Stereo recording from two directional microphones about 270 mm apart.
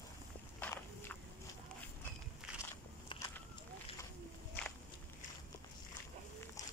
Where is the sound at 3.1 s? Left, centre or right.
Centre.